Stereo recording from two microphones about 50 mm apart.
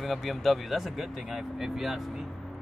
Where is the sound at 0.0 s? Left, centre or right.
Centre.